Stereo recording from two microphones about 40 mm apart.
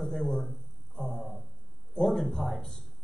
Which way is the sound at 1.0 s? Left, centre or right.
Left.